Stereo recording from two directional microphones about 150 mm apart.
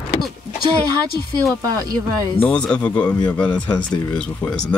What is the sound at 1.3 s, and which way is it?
Speech, 25° right (ahead or behind).